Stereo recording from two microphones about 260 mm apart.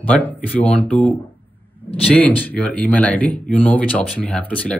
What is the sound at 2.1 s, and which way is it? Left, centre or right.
Speech, centre.